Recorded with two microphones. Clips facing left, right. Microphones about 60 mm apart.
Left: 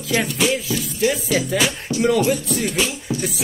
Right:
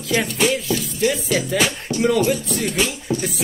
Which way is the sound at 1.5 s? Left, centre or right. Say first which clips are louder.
Even; right.